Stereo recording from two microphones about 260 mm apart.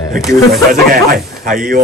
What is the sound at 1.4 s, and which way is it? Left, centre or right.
Speech, right.